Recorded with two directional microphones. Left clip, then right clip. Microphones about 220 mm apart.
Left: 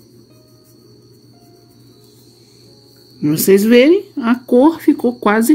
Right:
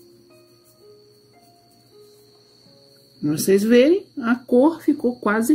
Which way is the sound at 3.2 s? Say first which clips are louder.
Left 6 dB; 35° left (ahead or behind).